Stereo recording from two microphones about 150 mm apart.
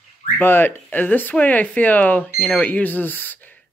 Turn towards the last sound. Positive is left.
turn(degrees=10)  # may be behind; listen again after turning